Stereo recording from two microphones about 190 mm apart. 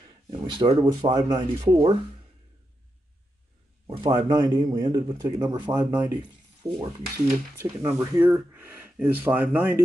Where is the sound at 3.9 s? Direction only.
25° right (ahead or behind).